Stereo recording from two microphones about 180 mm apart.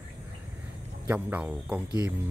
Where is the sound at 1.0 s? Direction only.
10° right (ahead or behind).